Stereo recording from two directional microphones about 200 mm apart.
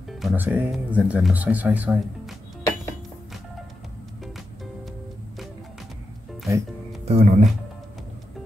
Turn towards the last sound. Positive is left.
turn(degrees=-30)  # may be behind; listen again after turning